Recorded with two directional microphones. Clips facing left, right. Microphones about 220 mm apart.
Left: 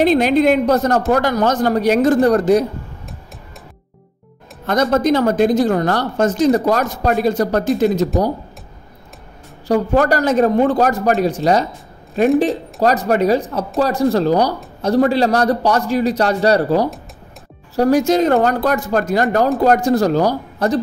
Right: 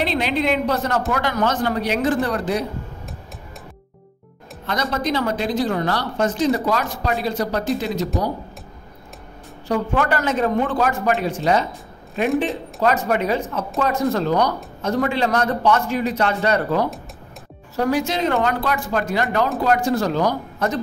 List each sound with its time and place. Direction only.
0.0 s speech: 45° left (ahead or behind)
4.6 s speech: 45° left (ahead or behind)
9.7 s a man's voice: 40° left (ahead or behind)